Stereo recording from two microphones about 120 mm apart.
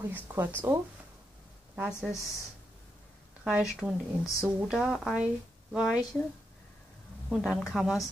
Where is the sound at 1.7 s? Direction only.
5° right (ahead or behind).